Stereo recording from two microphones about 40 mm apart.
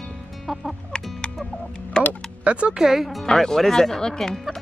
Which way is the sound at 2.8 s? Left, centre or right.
Centre.